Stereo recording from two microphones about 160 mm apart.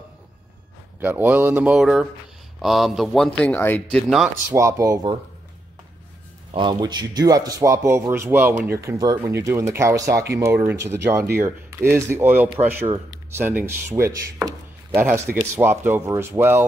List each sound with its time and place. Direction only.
1.0 s speech: 10° right (ahead or behind); by 3.8 s 10° left (ahead or behind)
3.9 s speech: centre (ahead or behind)
4.5 s speech: 20° right (ahead or behind)
6.5 s speech: 30° right (ahead or behind); by 16.6 s 15° right (ahead or behind)